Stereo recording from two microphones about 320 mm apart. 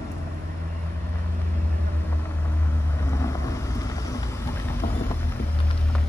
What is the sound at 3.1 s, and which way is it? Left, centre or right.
Boat, centre.